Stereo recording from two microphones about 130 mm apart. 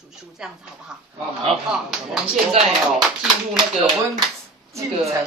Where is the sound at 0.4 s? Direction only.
5° right (ahead or behind).